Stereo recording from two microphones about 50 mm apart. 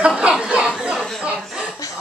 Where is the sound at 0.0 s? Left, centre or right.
Centre.